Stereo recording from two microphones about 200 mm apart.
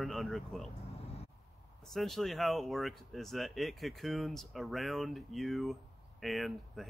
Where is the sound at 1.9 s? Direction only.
Centre (ahead or behind).